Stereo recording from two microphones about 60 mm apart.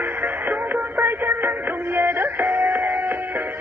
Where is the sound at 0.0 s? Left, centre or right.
Right.